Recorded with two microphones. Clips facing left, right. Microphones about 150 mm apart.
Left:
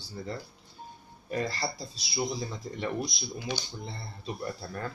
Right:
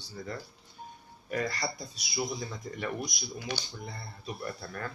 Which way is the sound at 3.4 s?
10° left (ahead or behind).